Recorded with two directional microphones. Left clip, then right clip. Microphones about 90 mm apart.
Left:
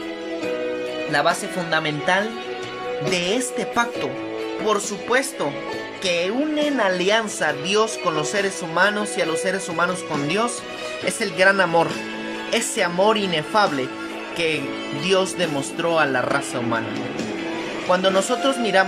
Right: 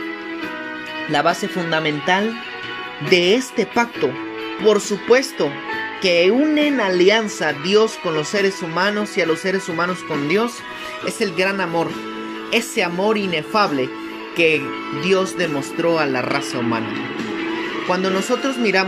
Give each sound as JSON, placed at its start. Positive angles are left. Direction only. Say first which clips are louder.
{"t": 1.1, "sound": "speech", "louder": "right 3 dB", "side_deg": -10}
{"t": 17.8, "sound": "speech", "louder": "left 2 dB", "side_deg": 0}